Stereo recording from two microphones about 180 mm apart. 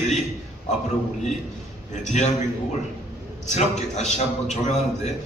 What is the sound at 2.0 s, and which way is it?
Speech, 40° left (ahead or behind).